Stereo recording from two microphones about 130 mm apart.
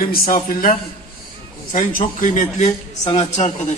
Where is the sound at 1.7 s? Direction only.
85° left.